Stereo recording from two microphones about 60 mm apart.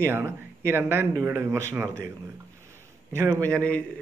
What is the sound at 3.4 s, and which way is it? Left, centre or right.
Speech, left.